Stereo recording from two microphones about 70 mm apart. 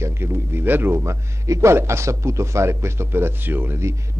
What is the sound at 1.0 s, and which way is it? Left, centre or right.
A man's voice, right.